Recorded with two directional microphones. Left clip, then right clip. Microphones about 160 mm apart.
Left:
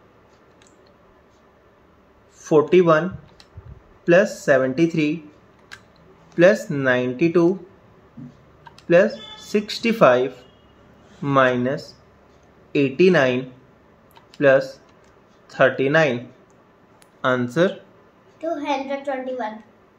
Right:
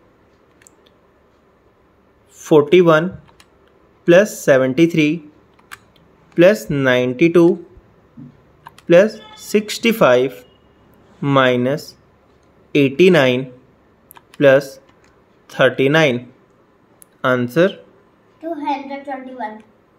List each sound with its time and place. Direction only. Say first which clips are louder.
2.3 s speech: right 4 dB; 60° right (ahead or behind)
6.3 s speech: right 3 dB; 50° right (ahead or behind)
8.8 s speech: right 4 dB; 55° right (ahead or behind)
17.2 s speech: right 4 dB; 40° right (ahead or behind)
18.6 s a woman's voice: right 4 dB; 5° left (ahead or behind)